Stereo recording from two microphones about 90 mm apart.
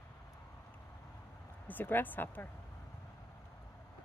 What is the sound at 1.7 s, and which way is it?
Speech, 20° left (ahead or behind).